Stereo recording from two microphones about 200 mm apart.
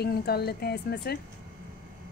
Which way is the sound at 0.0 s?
50° left (ahead or behind).